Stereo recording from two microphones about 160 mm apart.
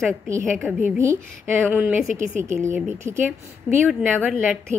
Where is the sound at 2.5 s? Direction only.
15° right (ahead or behind).